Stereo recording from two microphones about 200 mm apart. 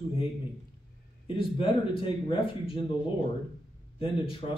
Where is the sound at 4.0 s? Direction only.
25° left (ahead or behind).